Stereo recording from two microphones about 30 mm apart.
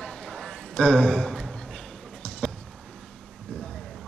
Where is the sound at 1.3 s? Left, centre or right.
Centre.